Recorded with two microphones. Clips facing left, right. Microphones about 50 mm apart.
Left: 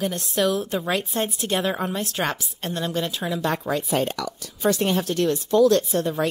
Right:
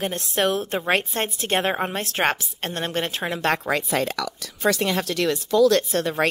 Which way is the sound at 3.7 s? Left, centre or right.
Right.